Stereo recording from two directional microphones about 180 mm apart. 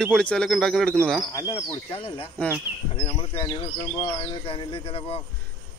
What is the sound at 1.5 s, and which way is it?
Speech, 30° left (ahead or behind).